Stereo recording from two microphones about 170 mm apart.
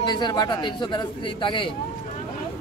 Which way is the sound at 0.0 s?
25° left (ahead or behind).